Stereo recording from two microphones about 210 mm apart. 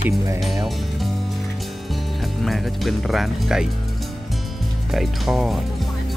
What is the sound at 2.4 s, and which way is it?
Speech, centre (ahead or behind).